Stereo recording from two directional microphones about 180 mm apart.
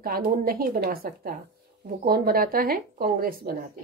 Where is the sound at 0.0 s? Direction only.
55° right (ahead or behind).